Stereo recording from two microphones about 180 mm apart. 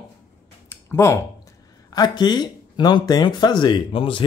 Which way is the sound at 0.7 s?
15° left (ahead or behind).